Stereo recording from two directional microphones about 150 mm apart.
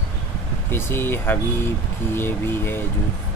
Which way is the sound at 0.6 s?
15° left (ahead or behind).